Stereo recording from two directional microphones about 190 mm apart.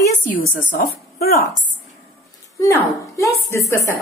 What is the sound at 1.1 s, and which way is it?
Speech, 55° left (ahead or behind).